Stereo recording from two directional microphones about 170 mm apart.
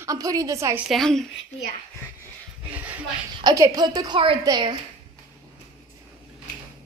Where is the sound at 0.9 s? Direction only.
Centre (ahead or behind).